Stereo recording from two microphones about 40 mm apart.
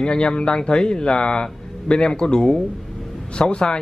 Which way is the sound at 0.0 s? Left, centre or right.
Left.